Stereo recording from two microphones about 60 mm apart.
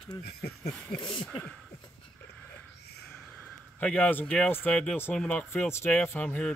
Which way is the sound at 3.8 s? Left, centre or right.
Left.